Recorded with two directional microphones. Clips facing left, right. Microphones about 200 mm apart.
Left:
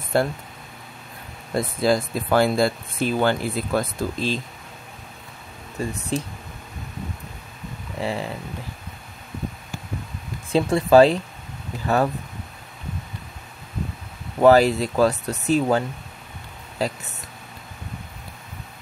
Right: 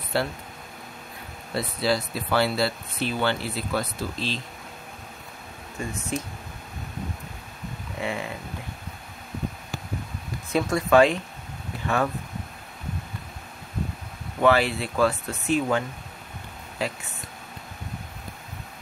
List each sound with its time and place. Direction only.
0.1 s speech: 45° left (ahead or behind)
1.5 s speech: 50° left (ahead or behind)
5.8 s speech: 35° left (ahead or behind)
8.0 s speech: 35° left (ahead or behind)
10.5 s speech: 30° left (ahead or behind)
14.4 s speech: 40° left (ahead or behind)